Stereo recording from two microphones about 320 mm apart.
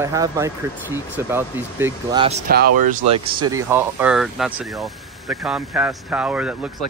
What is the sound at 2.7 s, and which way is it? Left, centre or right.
Speech, right.